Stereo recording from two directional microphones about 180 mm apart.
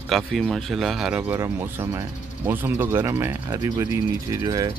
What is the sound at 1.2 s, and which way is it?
Speech, 15° right (ahead or behind).